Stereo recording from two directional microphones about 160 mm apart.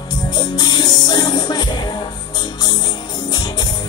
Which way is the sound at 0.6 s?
25° left (ahead or behind).